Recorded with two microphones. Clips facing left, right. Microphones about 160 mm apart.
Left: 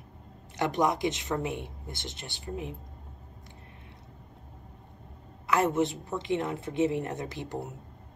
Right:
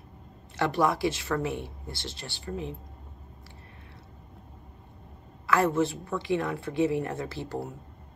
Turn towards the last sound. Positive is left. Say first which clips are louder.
# right 2 dB
turn(degrees=20)  # may be behind; listen again after turning